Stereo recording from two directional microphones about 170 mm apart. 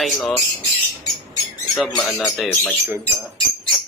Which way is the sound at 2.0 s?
10° left (ahead or behind).